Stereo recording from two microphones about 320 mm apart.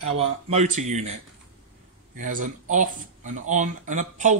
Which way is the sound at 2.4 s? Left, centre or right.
Right.